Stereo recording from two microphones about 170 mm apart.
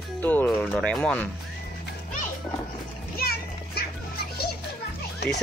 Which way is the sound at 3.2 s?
65° left (ahead or behind).